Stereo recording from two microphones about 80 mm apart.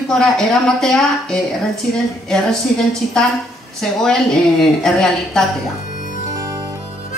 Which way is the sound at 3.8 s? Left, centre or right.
Centre.